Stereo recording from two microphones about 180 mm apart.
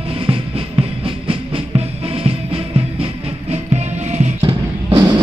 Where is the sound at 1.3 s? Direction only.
35° right (ahead or behind).